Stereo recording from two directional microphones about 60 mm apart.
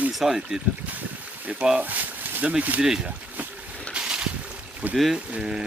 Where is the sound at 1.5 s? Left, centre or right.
Centre.